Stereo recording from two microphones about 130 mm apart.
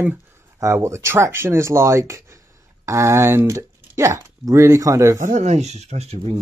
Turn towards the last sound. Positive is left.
turn(degrees=-55)  # may be behind; listen again after turning